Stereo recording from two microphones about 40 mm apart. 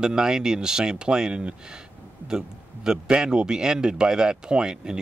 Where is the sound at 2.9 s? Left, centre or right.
Right.